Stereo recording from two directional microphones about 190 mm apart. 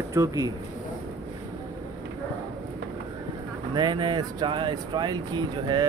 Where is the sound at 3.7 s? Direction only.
25° right (ahead or behind).